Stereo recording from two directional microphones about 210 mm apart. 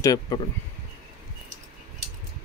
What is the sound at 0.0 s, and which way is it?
Speech, 15° left (ahead or behind).